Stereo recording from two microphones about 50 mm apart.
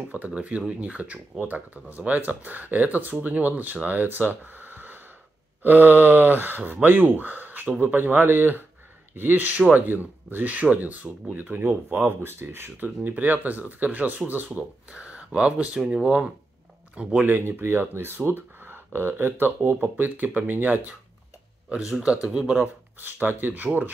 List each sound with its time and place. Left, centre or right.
0.3 s speech: right
11.9 s speech: right
12.8 s speech: right
17.2 s speech: right
22.0 s speech: right
22.6 s speech: right